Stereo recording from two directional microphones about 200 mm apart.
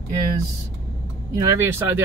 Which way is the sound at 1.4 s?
15° right (ahead or behind).